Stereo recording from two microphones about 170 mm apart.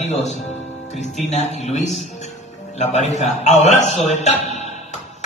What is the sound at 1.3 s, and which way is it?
A man's voice, 40° left (ahead or behind).